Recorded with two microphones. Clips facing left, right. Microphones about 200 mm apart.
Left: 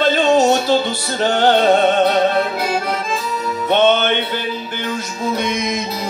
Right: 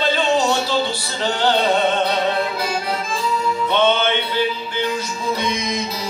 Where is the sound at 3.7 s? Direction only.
50° left (ahead or behind).